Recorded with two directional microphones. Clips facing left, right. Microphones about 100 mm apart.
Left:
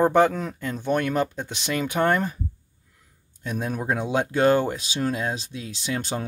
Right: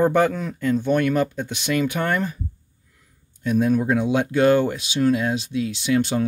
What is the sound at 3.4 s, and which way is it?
Speech, 30° left (ahead or behind).